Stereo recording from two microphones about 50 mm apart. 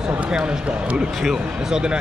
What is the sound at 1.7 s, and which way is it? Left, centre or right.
Speech, centre.